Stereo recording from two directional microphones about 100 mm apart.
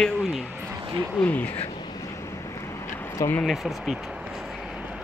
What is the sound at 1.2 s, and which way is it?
Speech, 15° left (ahead or behind).